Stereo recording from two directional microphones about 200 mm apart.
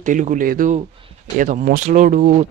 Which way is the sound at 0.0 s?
40° right (ahead or behind).